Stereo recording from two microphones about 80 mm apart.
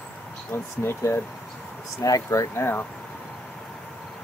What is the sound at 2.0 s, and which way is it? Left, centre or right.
Speech, left.